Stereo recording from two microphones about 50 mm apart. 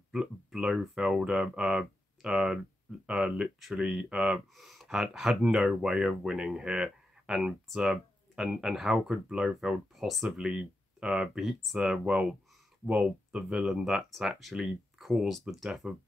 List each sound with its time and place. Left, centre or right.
0.6 s speech: centre
4.2 s speech: centre
10.0 s speech: centre
10.3 s speech: centre
13.6 s speech: centre